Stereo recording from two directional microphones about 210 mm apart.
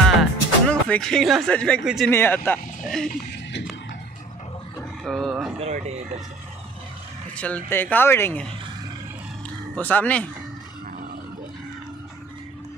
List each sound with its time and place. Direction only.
0.0 s music: 5° left (ahead or behind)
2.1 s speech: 10° left (ahead or behind)
5.0 s speech: centre (ahead or behind)
5.6 s speech: 30° right (ahead or behind)
7.3 s speech: 5° left (ahead or behind)
9.8 s speech: 5° left (ahead or behind)